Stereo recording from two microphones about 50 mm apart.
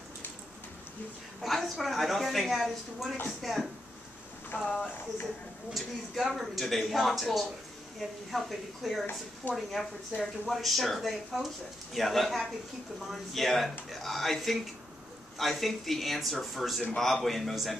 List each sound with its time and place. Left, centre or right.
1.4 s speech: centre
4.5 s speech: left
5.8 s speech: centre